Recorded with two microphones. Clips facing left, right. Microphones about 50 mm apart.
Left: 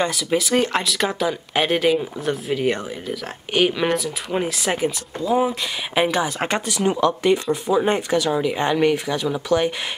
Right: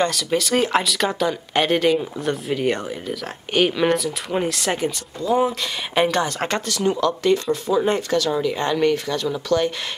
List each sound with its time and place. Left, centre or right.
0.0 s speech: centre